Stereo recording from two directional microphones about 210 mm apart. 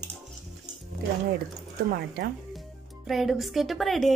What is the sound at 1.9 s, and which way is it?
Speech, 45° right (ahead or behind).